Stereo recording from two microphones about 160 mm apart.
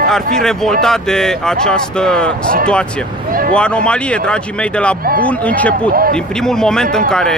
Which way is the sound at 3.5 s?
5° left (ahead or behind).